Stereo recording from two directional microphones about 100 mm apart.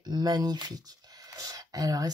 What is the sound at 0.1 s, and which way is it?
Speech, 40° right (ahead or behind).